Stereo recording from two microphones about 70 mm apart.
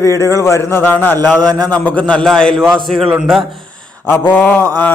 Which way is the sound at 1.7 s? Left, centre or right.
Left.